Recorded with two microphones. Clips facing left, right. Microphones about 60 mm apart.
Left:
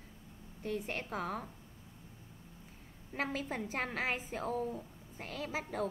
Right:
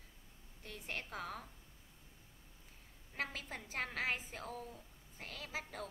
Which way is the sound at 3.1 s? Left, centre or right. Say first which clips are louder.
Left 6 dB; centre.